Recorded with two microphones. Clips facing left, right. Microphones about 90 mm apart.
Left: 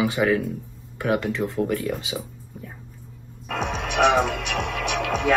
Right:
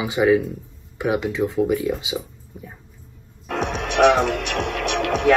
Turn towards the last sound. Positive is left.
turn(degrees=-60)  # may be behind; listen again after turning